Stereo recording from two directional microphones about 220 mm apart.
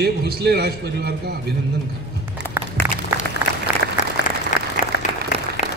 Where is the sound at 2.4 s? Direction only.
10° left (ahead or behind).